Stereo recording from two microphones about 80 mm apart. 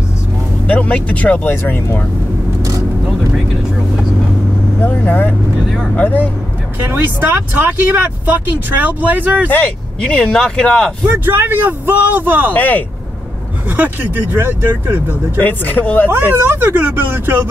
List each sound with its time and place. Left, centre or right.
0.7 s speech: centre
4.8 s vehicle: left
5.9 s speech: left
6.8 s speech: right
9.5 s speech: centre
11.1 s speech: right
12.5 s speech: left
13.7 s speech: right
15.4 s speech: left
16.1 s speech: right